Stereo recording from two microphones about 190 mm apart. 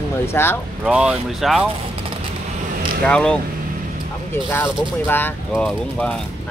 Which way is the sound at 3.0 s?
5° left (ahead or behind).